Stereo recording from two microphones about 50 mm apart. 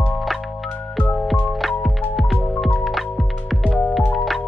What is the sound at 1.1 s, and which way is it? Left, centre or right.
Music, centre.